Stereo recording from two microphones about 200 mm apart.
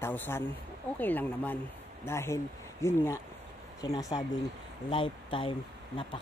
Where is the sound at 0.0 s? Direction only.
10° left (ahead or behind).